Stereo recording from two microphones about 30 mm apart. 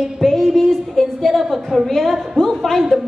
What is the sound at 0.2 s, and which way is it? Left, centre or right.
Music, centre.